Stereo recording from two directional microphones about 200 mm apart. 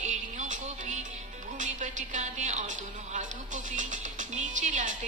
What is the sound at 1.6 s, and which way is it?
A woman's voice, 40° right (ahead or behind).